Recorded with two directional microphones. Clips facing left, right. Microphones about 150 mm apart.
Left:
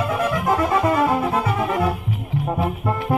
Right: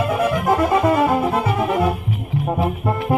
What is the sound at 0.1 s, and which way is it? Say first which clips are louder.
Music: right 2 dB; 20° right (ahead or behind).